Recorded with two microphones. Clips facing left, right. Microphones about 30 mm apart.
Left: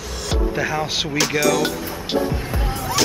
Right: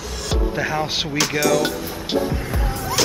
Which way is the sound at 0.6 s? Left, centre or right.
Centre.